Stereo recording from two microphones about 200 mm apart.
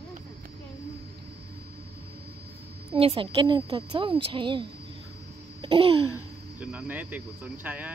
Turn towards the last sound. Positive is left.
turn(degrees=-10)  # may be behind; listen again after turning